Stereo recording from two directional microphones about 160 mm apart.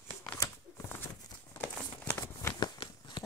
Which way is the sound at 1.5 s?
10° left (ahead or behind).